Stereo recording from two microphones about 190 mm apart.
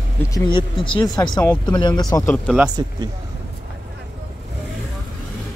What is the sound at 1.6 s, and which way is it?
Speech, 25° left (ahead or behind).